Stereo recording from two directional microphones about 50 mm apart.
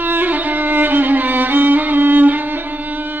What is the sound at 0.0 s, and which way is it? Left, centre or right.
Violin, right.